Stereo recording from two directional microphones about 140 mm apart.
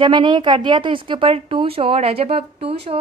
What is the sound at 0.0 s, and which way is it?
A woman's voice, 35° right (ahead or behind).